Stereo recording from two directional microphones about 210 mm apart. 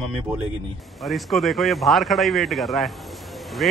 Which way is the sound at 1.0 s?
Centre (ahead or behind).